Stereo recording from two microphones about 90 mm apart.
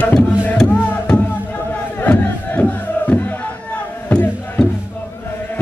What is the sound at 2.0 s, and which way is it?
Crowd, 15° left (ahead or behind).